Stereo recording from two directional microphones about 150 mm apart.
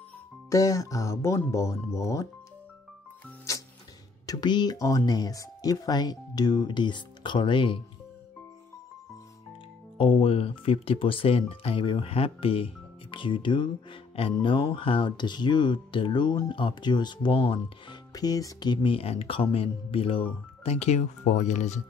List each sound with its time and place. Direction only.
0.5 s speech: 20° left (ahead or behind)
4.3 s speech: 30° left (ahead or behind)
9.9 s speech: 35° left (ahead or behind)
20.6 s speech: 50° left (ahead or behind)